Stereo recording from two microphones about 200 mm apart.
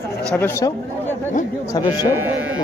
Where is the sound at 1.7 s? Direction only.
20° left (ahead or behind).